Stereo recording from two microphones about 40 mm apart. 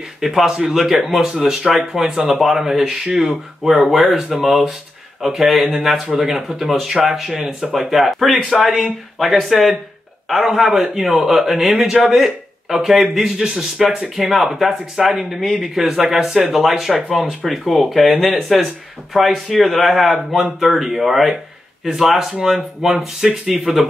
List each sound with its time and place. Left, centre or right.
0.2 s speech: centre
11.7 s speech: centre
12.0 s a man's voice: centre
23.5 s speech: centre